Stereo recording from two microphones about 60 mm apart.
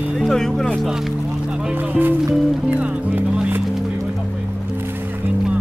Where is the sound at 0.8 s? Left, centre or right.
Centre.